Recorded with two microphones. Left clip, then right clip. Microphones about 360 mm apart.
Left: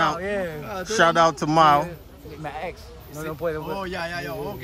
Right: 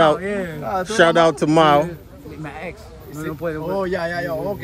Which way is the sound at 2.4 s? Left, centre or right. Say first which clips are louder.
Even; left.